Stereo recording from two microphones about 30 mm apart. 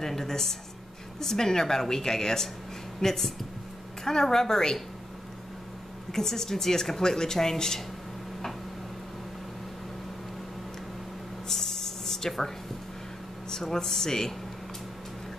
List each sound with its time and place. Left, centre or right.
0.0 s a woman's voice: centre
6.1 s a woman's voice: centre
11.4 s a sound: centre
13.5 s a woman's voice: centre